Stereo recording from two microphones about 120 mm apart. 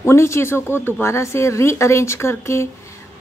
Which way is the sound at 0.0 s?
20° left (ahead or behind).